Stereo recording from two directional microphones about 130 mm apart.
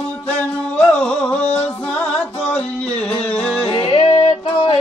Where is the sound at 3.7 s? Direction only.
40° left (ahead or behind).